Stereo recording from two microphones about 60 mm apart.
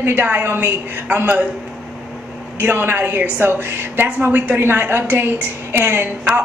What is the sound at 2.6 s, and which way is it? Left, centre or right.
A woman's voice, right.